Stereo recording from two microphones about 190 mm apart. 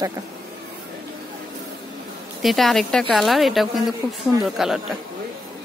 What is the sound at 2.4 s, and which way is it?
Speech, centre (ahead or behind).